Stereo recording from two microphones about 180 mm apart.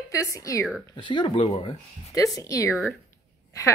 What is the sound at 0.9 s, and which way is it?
Speech, 25° left (ahead or behind).